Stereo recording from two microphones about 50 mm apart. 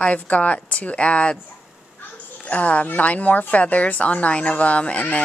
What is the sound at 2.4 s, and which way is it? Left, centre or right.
Speech, left.